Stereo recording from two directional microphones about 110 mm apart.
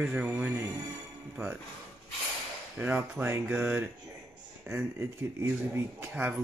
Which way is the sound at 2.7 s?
15° right (ahead or behind).